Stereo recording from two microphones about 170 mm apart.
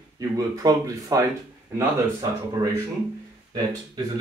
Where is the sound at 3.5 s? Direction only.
20° right (ahead or behind).